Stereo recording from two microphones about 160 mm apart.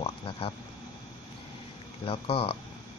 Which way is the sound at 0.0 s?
35° left (ahead or behind).